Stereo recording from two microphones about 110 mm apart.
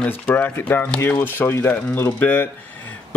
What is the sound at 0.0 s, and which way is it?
Speech, 20° left (ahead or behind).